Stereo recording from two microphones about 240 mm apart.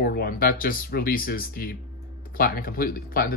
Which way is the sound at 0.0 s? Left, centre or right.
Left.